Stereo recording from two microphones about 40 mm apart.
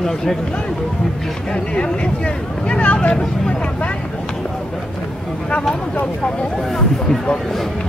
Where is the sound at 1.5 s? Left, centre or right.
Left.